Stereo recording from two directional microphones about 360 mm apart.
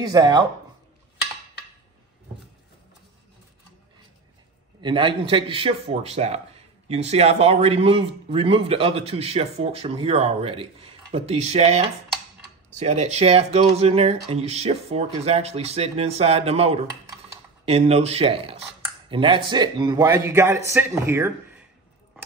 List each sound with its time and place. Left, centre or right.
0.0 s a man's voice: centre
4.8 s a man's voice: centre